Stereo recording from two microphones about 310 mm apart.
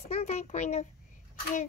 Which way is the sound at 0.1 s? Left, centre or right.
Left.